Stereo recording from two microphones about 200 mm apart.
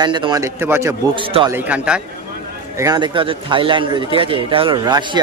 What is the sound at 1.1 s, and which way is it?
Speech, 25° right (ahead or behind).